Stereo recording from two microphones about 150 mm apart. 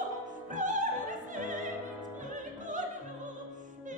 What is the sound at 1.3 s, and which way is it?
Opera, 60° right (ahead or behind).